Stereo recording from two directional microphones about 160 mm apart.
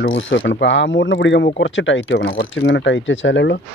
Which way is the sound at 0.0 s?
80° left.